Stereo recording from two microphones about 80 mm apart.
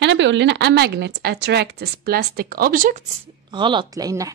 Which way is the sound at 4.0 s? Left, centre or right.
Right.